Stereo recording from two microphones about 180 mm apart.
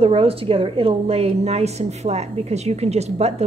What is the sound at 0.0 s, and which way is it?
A woman's voice, 30° right (ahead or behind).